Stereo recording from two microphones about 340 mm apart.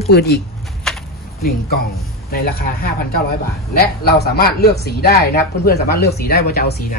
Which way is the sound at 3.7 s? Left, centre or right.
Left.